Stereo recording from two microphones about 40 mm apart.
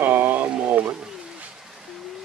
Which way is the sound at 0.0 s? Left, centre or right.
Right.